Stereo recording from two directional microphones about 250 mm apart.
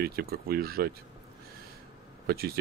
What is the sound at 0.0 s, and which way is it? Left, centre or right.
Speech, right.